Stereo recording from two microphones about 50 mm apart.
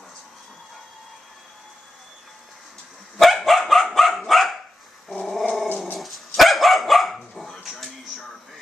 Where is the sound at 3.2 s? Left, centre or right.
Centre.